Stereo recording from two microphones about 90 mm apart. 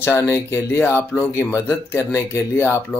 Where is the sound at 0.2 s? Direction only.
30° left (ahead or behind).